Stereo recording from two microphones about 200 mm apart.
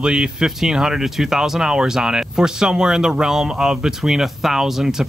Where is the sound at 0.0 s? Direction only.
5° right (ahead or behind).